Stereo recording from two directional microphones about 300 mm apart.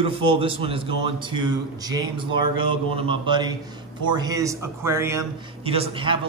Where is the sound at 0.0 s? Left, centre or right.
Centre.